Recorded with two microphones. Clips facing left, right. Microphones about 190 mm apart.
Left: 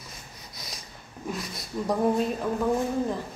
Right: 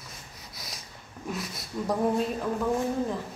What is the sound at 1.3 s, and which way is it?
Speech, 5° right (ahead or behind).